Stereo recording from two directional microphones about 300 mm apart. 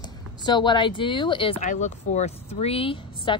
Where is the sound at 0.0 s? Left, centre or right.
Centre.